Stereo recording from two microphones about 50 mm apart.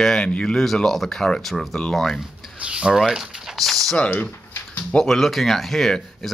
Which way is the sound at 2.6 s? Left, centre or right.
Centre.